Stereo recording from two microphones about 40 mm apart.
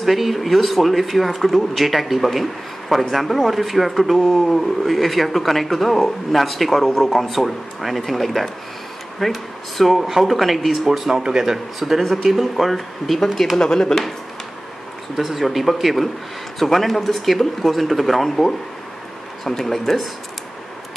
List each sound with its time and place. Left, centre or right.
0.0 s speech: centre
12.0 s speech: centre
15.1 s speech: centre
19.4 s speech: centre